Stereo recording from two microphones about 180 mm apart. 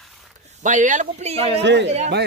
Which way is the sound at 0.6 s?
45° right (ahead or behind).